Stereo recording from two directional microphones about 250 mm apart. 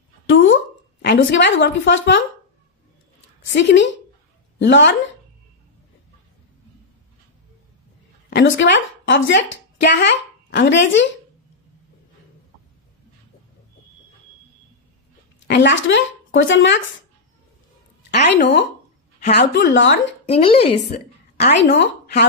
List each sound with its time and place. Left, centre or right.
0.3 s a sound: left
1.0 s a woman's voice: left
3.5 s a woman's voice: left
8.4 s a woman's voice: left
15.4 s speech: left
18.3 s a woman's voice: left
20.2 s speech: left
21.5 s a woman's voice: left